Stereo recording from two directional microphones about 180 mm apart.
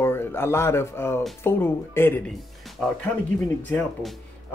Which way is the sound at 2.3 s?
Centre (ahead or behind).